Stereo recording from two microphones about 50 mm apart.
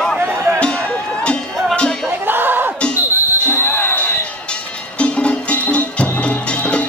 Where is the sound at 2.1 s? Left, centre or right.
Right.